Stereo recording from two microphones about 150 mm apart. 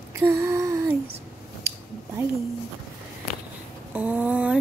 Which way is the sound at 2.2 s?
20° right (ahead or behind).